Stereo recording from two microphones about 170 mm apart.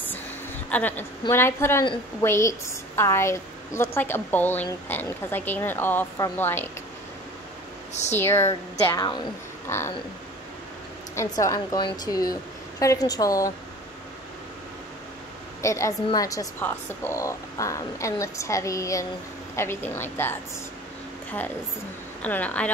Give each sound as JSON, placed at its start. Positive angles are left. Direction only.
{"t": 0.7, "sound": "speech", "side_deg": 10}
{"t": 7.9, "sound": "speech", "side_deg": 40}
{"t": 8.2, "sound": "speech", "side_deg": 15}
{"t": 8.9, "sound": "a woman's voice", "side_deg": 25}
{"t": 9.7, "sound": "speech", "side_deg": 15}
{"t": 11.1, "sound": "a woman's voice", "side_deg": 20}
{"t": 15.6, "sound": "speech", "side_deg": 20}
{"t": 22.2, "sound": "speech", "side_deg": 10}